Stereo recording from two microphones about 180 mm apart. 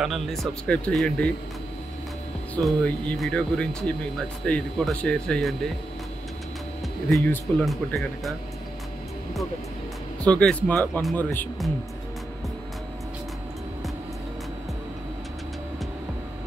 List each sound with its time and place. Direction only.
0.0 s speech: centre (ahead or behind)
2.5 s speech: 5° left (ahead or behind)
7.1 s speech: 15° left (ahead or behind)
7.5 s speech: centre (ahead or behind)
10.2 s speech: 5° left (ahead or behind)